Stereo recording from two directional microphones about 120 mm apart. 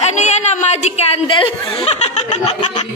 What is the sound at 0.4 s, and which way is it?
A woman's voice, 70° left (ahead or behind).